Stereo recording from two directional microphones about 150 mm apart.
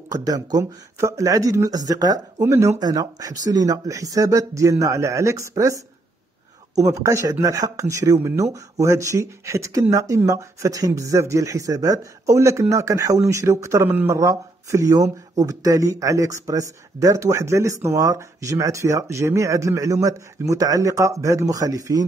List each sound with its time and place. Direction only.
0.1 s speech: 25° right (ahead or behind)